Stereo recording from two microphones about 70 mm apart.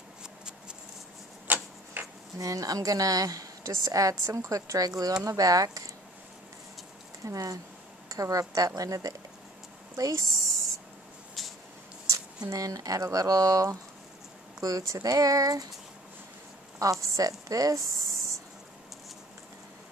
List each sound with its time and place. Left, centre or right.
1.5 s tick-tock: right
2.3 s a woman's voice: right
7.2 s a woman's voice: right
9.9 s a sound: right
11.4 s a sound: centre
12.4 s a woman's voice: right
16.8 s a woman's voice: right